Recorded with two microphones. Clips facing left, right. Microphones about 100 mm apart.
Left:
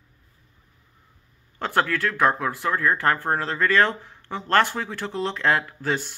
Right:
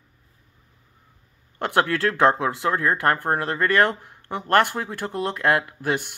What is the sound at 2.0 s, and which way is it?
Speech, 30° right (ahead or behind).